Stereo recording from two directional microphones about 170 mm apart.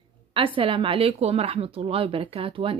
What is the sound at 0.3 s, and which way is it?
Speech, 30° right (ahead or behind).